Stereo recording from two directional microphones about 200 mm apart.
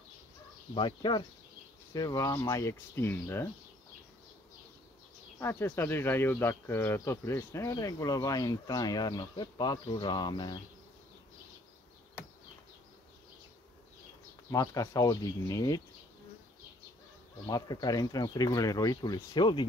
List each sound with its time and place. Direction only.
0.7 s speech: 25° left (ahead or behind)
5.4 s speech: 10° left (ahead or behind)
14.5 s speech: 15° left (ahead or behind)
17.5 s speech: 20° left (ahead or behind)